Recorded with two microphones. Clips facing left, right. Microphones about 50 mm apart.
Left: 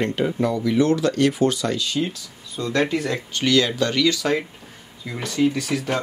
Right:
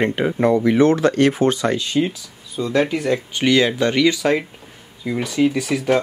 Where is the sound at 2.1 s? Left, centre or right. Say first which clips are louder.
Right 3 dB; centre.